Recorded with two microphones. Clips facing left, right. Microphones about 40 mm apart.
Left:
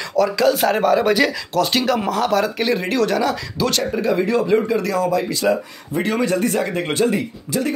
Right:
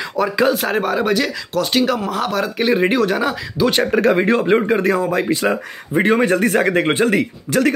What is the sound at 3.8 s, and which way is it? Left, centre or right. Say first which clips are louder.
Speech: right 5 dB; right.